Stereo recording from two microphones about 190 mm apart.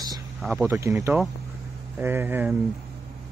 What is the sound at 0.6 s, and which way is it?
A man's voice, 15° right (ahead or behind).